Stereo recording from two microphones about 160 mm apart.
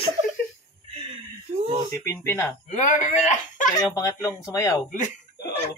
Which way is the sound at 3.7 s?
20° left (ahead or behind).